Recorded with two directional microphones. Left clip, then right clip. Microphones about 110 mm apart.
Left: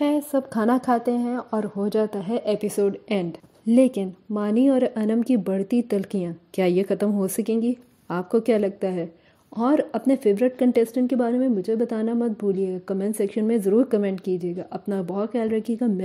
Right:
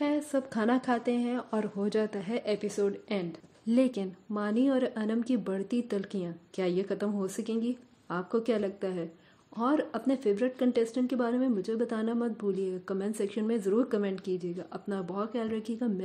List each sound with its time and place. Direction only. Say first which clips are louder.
0.3 s a woman's voice: left 7 dB; 35° left (ahead or behind)
2.7 s speech: left 8 dB; 75° left (ahead or behind)
3.6 s speech: left 9 dB; 50° left (ahead or behind)
9.6 s speech: left 8 dB; 80° left; by 15.9 s 65° left (ahead or behind)